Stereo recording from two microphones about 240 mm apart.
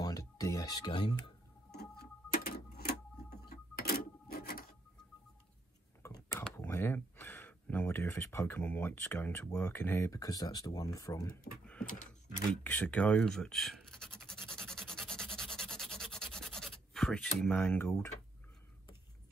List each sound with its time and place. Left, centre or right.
0.0 s music: centre
1.8 s printer: left
6.0 s a sound: centre
6.4 s speech: centre
14.5 s rub: centre